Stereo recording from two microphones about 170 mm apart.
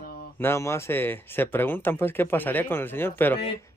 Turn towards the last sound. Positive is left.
turn(degrees=10)  # may be behind; listen again after turning